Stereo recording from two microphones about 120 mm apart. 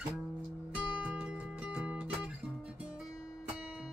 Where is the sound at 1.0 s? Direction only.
10° right (ahead or behind).